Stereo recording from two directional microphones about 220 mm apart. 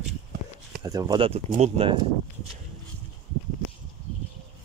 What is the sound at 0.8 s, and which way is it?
Speech, 15° right (ahead or behind).